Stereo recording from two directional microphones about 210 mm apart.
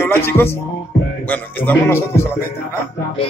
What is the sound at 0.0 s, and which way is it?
Music, 10° left (ahead or behind).